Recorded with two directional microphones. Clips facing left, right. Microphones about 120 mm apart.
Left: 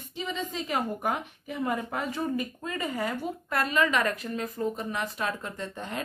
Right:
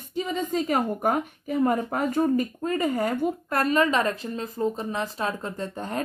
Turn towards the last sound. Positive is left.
turn(degrees=-40)  # may be behind; listen again after turning